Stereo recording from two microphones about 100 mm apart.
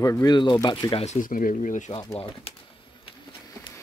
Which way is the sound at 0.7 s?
50° left (ahead or behind).